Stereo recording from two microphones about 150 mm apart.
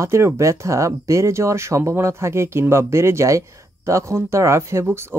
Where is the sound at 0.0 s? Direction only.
20° right (ahead or behind).